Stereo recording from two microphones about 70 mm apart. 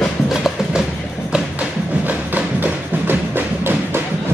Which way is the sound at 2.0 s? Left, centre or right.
Right.